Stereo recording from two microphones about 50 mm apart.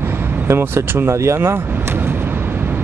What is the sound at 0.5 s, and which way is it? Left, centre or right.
Speech, right.